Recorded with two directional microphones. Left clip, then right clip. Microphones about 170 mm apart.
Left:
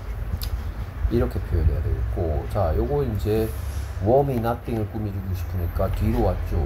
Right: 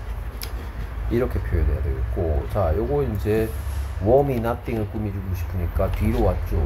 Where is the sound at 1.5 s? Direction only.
25° right (ahead or behind).